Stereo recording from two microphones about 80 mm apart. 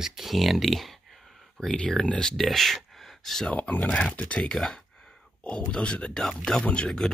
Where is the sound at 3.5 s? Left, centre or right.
Centre.